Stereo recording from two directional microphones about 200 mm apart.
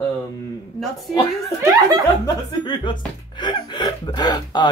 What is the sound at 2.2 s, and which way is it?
Speech, 20° left (ahead or behind).